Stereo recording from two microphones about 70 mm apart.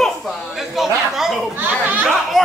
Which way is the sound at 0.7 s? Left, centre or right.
Centre.